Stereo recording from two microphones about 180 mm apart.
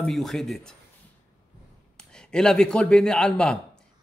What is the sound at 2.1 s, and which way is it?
A man's voice, 5° left (ahead or behind).